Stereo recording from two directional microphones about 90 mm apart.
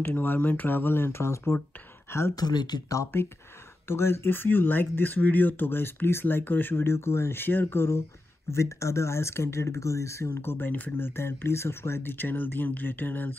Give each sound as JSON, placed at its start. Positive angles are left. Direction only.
{"t": 0.0, "sound": "speech", "side_deg": 20}
{"t": 2.3, "sound": "speech", "side_deg": 50}
{"t": 2.9, "sound": "speech", "side_deg": 30}